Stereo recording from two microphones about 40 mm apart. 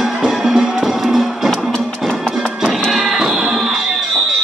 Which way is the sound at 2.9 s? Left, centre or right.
Centre.